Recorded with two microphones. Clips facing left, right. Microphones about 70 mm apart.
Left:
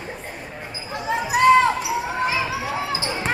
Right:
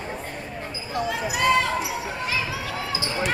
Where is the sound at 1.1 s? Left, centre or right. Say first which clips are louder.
Left 7 dB; left.